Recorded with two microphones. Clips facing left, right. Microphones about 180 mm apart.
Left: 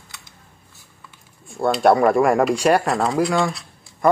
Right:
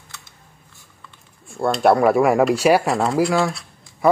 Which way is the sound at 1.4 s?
Centre (ahead or behind).